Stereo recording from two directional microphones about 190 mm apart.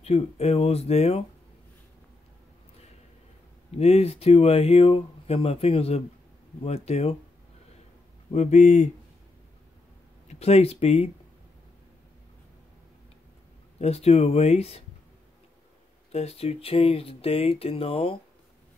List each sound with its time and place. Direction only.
0.0 s speech: 30° left (ahead or behind)
3.7 s speech: 35° left (ahead or behind)
8.3 s speech: 35° left (ahead or behind)
10.2 s speech: 35° left (ahead or behind)
13.7 s speech: 35° left (ahead or behind)
16.1 s speech: 35° left (ahead or behind)